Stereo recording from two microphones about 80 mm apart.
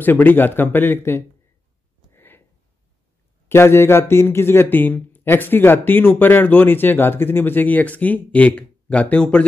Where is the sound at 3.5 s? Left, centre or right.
Left.